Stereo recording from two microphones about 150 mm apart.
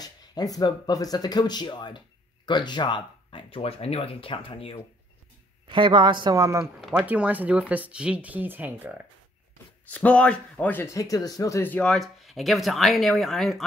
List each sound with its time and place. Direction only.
0.0 s speech: 25° left (ahead or behind)
5.7 s speech: 35° right (ahead or behind)
6.6 s speech: 5° right (ahead or behind)
9.8 s speech: 10° left (ahead or behind)